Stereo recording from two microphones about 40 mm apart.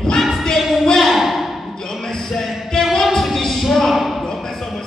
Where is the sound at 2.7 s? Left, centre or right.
Centre.